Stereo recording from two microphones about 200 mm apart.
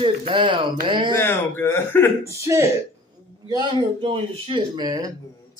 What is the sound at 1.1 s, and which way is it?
Speech, 10° left (ahead or behind).